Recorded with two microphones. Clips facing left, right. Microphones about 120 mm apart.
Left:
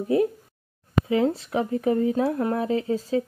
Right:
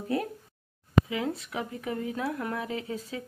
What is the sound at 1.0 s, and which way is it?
Speech, 35° left (ahead or behind).